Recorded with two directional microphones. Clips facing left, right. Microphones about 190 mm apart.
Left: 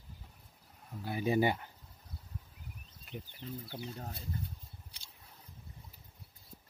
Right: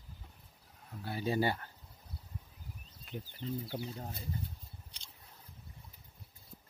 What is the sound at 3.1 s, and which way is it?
Speech, centre (ahead or behind).